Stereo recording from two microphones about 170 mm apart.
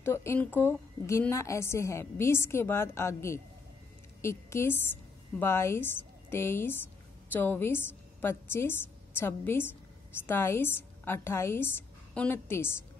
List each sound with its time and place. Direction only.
0.0 s a woman's voice: 15° left (ahead or behind)